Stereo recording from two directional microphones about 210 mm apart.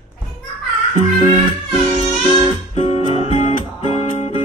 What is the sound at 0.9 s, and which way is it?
Music, 35° left (ahead or behind).